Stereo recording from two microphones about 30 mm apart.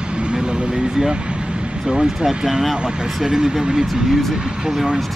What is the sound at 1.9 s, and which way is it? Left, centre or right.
Speech, right.